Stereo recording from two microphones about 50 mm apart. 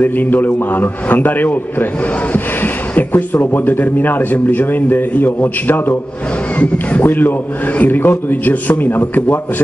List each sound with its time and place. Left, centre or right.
0.0 s speech: left
6.6 s speech: left
7.1 s speech: left